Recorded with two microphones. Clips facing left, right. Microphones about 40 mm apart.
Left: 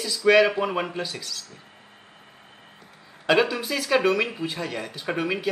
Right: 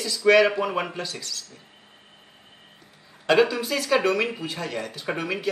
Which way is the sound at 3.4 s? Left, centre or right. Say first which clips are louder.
Right 1 dB; centre.